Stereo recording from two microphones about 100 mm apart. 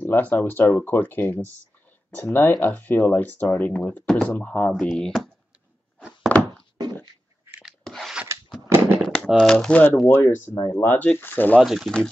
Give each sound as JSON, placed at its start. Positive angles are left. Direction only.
{"t": 0.0, "sound": "speech", "side_deg": 20}
{"t": 4.7, "sound": "speech", "side_deg": 5}
{"t": 6.3, "sound": "a sound", "side_deg": 15}
{"t": 7.6, "sound": "rub", "side_deg": 5}
{"t": 8.6, "sound": "firecracker", "side_deg": -25}
{"t": 9.0, "sound": "typing", "side_deg": 5}
{"t": 9.5, "sound": "speech", "side_deg": 10}
{"t": 11.6, "sound": "speech", "side_deg": 0}